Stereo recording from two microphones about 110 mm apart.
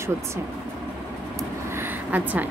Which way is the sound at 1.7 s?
20° right (ahead or behind).